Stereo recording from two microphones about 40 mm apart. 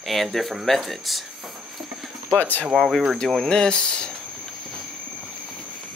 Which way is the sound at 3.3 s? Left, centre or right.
Centre.